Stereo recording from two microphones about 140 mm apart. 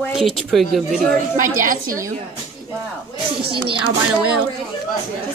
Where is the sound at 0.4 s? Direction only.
Centre (ahead or behind).